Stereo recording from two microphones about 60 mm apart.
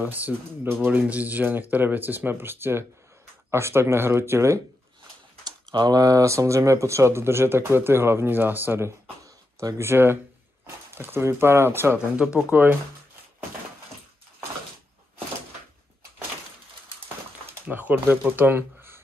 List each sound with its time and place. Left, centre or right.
0.0 s speech: right
5.9 s speech: right
12.2 s speech: centre
12.4 s speech: right
17.6 s speech: right